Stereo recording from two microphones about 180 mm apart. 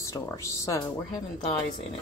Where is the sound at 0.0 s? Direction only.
15° left (ahead or behind).